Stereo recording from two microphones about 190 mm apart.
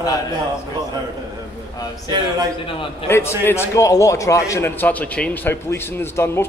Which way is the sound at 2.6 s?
30° left (ahead or behind).